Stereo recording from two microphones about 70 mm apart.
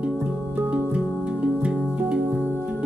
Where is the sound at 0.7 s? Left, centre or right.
Centre.